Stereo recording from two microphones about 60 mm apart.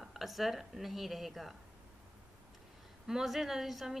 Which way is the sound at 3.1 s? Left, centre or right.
Centre.